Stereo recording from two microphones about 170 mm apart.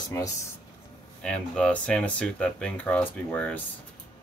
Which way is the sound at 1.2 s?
5° left (ahead or behind).